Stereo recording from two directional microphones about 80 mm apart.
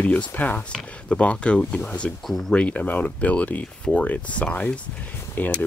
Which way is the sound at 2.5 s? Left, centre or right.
Centre.